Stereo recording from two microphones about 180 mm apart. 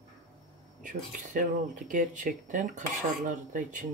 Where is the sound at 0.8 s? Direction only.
45° right (ahead or behind).